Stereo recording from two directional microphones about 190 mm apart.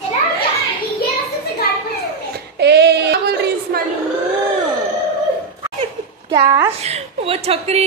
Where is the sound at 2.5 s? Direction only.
60° right (ahead or behind).